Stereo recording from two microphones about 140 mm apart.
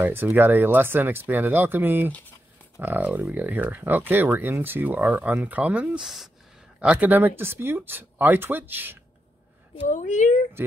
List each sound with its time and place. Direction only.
0.0 s speech: 15° right (ahead or behind)
9.8 s speech: 65° left (ahead or behind)